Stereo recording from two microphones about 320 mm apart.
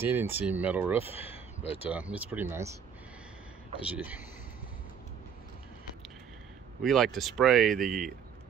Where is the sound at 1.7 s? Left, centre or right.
Centre.